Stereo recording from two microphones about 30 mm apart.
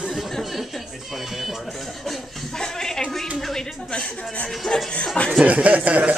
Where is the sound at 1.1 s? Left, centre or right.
Centre.